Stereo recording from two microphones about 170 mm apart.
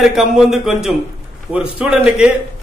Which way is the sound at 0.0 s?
5° right (ahead or behind).